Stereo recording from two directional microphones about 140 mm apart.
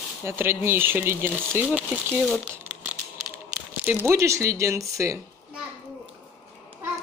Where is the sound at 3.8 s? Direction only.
15° right (ahead or behind).